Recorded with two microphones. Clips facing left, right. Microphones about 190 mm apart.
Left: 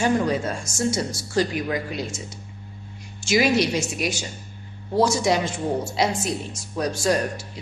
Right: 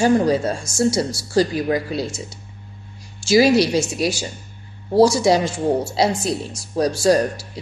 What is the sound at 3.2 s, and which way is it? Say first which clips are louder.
A woman's voice: right 6 dB; 35° right (ahead or behind).